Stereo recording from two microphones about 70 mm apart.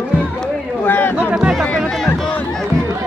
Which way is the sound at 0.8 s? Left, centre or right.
Left.